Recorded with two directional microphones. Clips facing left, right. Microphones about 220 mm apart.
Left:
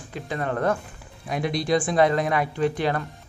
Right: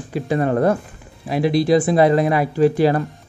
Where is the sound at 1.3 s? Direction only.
5° right (ahead or behind).